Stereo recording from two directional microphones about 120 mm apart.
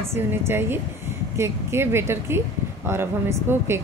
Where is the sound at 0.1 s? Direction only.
20° right (ahead or behind).